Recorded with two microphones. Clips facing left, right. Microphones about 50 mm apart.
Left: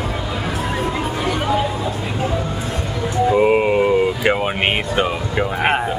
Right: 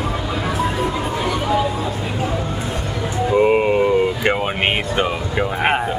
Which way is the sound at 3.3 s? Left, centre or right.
Centre.